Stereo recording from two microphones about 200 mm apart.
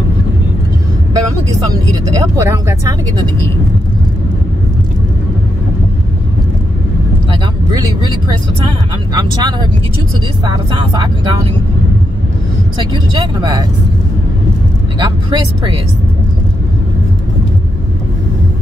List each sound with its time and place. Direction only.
1.1 s vehicle: 15° right (ahead or behind)
2.0 s speech: 15° right (ahead or behind)
7.7 s speech: 20° right (ahead or behind)
13.4 s speech: 20° right (ahead or behind)
15.0 s speech: 20° right (ahead or behind)